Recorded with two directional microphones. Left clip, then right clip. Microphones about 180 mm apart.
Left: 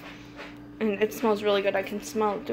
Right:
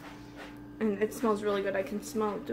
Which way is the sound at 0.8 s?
10° right (ahead or behind).